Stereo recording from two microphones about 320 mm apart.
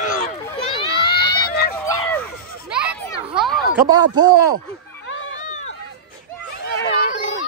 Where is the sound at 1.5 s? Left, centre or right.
Left.